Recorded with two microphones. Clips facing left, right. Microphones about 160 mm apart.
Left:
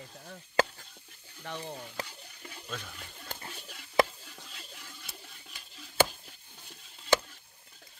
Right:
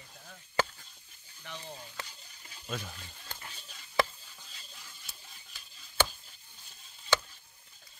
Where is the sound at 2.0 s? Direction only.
65° left (ahead or behind).